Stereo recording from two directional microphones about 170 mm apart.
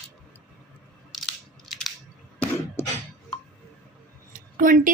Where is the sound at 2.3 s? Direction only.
15° left (ahead or behind).